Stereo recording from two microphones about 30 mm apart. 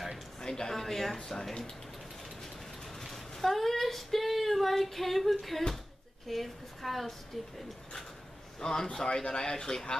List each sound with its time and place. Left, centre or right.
0.4 s a sound: left
0.7 s speech: centre
3.0 s a woman's voice: centre
8.5 s speech: centre